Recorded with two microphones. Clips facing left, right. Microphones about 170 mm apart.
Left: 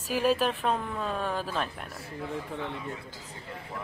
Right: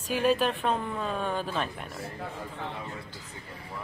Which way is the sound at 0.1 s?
Centre (ahead or behind).